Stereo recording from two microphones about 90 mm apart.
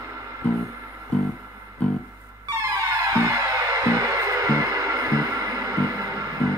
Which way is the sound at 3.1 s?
35° right (ahead or behind).